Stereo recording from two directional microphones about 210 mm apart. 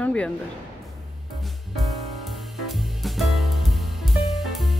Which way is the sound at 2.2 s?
Centre (ahead or behind).